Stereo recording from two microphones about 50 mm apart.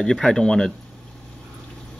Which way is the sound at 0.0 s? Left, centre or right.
Centre.